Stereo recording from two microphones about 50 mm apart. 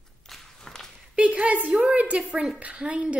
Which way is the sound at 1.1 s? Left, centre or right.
Right.